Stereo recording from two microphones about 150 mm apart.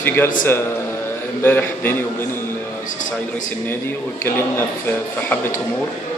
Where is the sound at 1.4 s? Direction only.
15° left (ahead or behind).